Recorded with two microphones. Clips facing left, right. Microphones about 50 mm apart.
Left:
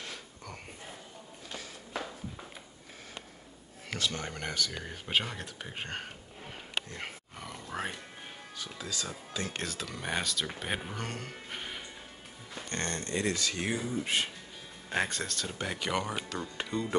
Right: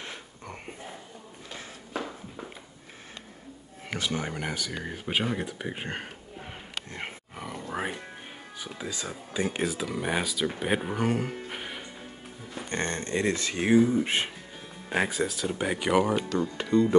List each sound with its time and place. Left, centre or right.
0.0 s wheeze: right
3.9 s speech: centre
6.9 s roar: right
7.3 s grunt: centre
8.5 s speech: centre
14.9 s speech: centre
16.7 s speech: centre